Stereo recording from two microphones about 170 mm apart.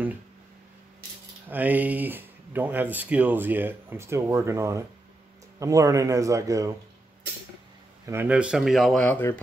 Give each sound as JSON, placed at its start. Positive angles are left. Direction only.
{"t": 1.5, "sound": "speech", "side_deg": -10}
{"t": 8.0, "sound": "speech", "side_deg": -15}